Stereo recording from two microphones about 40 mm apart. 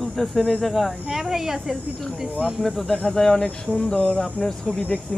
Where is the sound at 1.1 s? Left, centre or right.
Centre.